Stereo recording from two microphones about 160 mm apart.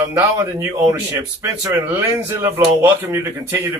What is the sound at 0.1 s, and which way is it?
A man's voice, 15° right (ahead or behind).